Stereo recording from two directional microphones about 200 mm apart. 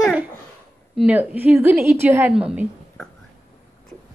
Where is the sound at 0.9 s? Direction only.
5° right (ahead or behind).